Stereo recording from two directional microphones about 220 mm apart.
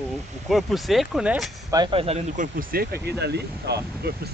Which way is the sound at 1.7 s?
20° right (ahead or behind).